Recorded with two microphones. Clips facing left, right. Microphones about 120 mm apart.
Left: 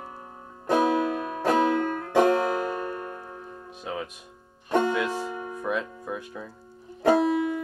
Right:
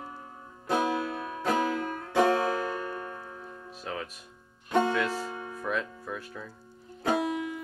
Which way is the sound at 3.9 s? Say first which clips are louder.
Left 3 dB; 15° left (ahead or behind).